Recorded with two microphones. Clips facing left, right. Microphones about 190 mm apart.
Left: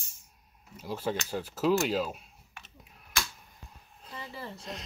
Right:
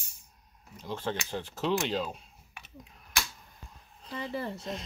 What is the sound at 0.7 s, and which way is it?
Speech, 5° left (ahead or behind).